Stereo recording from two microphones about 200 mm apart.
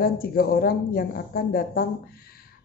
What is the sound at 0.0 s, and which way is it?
Speech, 50° left (ahead or behind).